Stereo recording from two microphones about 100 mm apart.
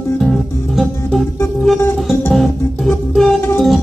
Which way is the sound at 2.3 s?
Centre (ahead or behind).